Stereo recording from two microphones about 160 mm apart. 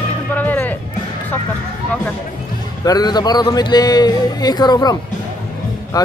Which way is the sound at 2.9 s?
25° left (ahead or behind).